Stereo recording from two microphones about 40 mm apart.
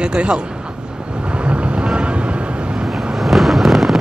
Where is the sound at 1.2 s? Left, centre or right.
Right.